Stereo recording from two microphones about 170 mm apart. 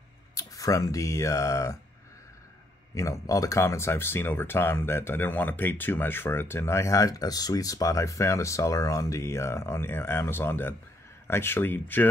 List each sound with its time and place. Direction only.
0.3 s speech: 20° left (ahead or behind)
2.9 s speech: 20° left (ahead or behind)